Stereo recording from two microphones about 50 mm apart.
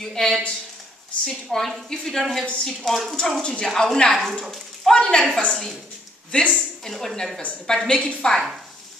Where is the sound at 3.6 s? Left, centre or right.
Centre.